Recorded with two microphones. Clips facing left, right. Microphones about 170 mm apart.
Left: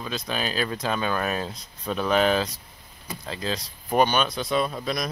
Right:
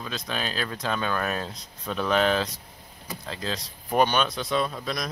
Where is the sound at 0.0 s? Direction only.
5° left (ahead or behind).